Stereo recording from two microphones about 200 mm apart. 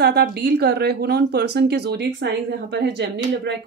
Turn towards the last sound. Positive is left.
turn(degrees=-60)  # may be behind; listen again after turning